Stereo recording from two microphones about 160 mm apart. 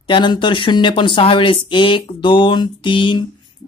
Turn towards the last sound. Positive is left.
turn(degrees=30)  # may be behind; listen again after turning